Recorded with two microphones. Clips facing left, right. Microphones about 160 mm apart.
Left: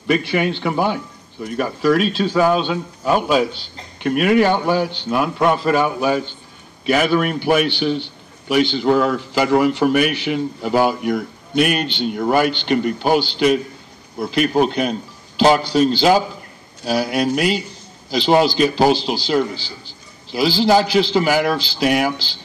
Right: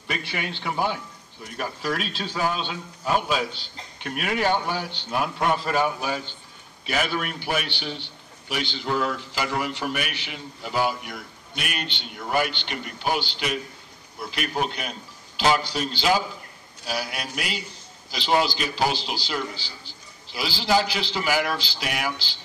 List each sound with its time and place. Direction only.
0.1 s a man's voice: 65° left (ahead or behind); by 22.3 s 25° left (ahead or behind)